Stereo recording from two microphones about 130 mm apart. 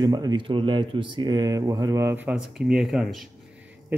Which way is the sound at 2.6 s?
5° right (ahead or behind).